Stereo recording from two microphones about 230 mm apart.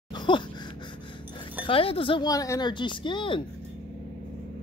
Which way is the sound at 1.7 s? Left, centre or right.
Left.